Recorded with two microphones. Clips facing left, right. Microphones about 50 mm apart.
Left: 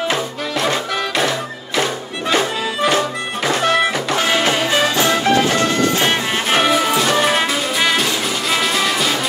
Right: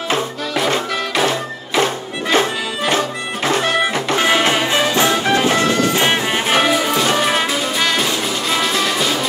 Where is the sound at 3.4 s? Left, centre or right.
Right.